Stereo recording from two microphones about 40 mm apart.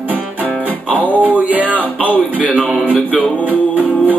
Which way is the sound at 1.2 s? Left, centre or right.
Right.